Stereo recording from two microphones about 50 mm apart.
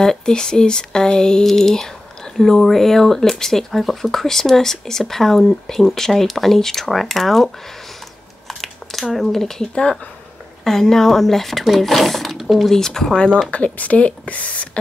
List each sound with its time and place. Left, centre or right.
0.0 s speech: centre
8.5 s a sound: centre
9.1 s speech: centre
13.7 s speech: left